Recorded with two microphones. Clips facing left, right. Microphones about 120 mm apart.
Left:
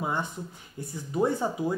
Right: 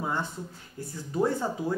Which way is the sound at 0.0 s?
15° left (ahead or behind).